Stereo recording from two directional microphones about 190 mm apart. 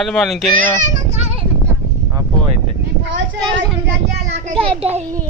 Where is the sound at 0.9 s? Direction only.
35° right (ahead or behind).